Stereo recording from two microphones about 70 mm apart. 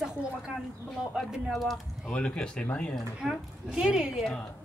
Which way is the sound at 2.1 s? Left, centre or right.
Centre.